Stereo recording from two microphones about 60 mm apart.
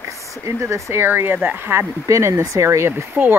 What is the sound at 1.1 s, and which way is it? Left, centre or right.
Speech, right.